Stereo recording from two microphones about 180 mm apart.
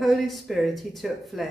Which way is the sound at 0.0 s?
Centre (ahead or behind).